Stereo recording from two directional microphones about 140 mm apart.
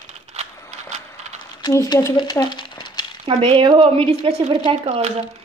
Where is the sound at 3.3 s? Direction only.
40° right (ahead or behind).